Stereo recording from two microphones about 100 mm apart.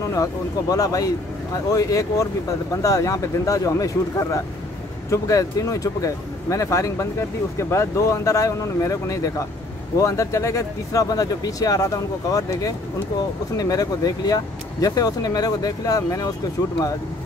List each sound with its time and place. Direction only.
0.1 s speech: 35° left (ahead or behind)